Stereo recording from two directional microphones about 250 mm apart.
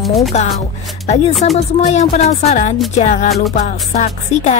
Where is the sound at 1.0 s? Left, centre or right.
Left.